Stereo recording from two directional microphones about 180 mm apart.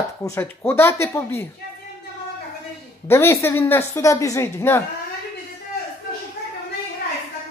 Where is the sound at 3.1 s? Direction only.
15° left (ahead or behind).